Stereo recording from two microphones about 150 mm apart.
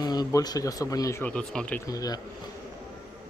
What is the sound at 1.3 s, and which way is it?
Speech, 5° left (ahead or behind).